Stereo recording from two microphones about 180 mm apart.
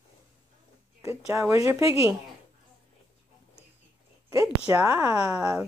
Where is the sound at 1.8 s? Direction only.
30° left (ahead or behind).